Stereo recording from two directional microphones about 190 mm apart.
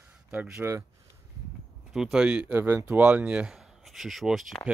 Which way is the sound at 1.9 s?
Centre (ahead or behind).